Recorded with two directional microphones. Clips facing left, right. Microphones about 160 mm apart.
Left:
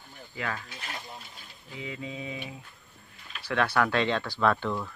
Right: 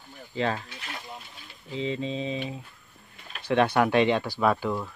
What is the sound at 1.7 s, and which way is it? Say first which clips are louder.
Speech: right 8 dB; 25° right (ahead or behind).